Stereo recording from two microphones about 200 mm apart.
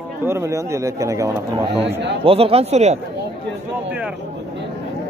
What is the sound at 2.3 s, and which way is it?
Speech, 30° right (ahead or behind).